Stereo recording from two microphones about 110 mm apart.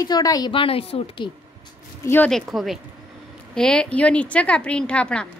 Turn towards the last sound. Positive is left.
turn(degrees=10)  # may be behind; listen again after turning